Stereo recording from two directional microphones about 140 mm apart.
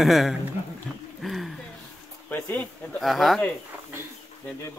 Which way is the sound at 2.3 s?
15° left (ahead or behind).